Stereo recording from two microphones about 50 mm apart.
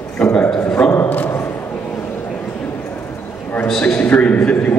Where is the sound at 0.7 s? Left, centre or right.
Left.